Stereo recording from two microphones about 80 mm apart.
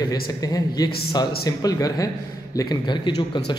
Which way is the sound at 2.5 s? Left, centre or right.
Left.